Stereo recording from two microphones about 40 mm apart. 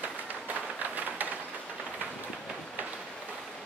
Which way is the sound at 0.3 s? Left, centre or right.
Right.